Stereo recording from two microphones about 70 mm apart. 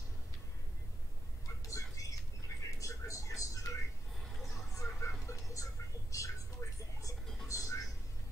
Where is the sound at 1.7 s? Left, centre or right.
Left.